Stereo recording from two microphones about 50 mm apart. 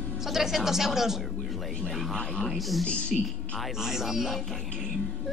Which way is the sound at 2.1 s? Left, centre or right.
Centre.